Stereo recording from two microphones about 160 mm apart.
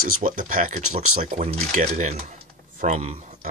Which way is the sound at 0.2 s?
50° right (ahead or behind).